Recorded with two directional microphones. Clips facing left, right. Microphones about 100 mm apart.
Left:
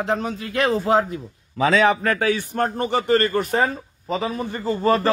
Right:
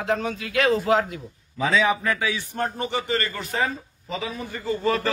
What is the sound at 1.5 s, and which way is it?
A man's voice, 70° left (ahead or behind).